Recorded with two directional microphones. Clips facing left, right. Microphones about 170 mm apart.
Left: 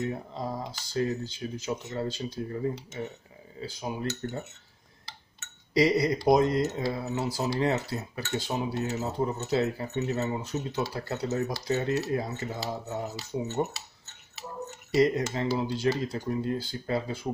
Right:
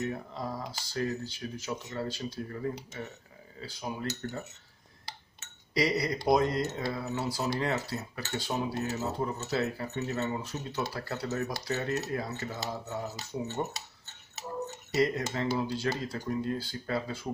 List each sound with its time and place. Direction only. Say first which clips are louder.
0.0 s speech: left 2 dB; 25° left (ahead or behind)
5.8 s speech: left 5 dB; 25° left (ahead or behind)
15.0 s speech: left 4 dB; 25° left (ahead or behind)